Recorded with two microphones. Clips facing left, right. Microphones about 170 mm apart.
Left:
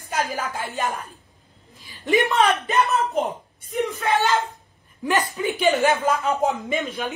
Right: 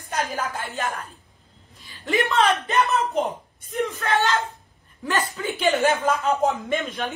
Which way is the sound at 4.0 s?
15° left (ahead or behind).